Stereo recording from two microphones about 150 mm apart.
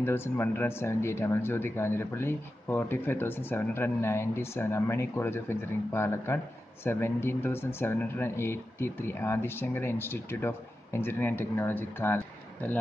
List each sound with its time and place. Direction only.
0.0 s speech: 15° left (ahead or behind)